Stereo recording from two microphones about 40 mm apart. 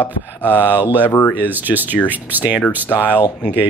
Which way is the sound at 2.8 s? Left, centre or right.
Left.